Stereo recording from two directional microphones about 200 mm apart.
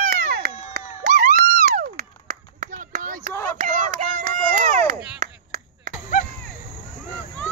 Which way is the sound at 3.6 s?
40° right (ahead or behind).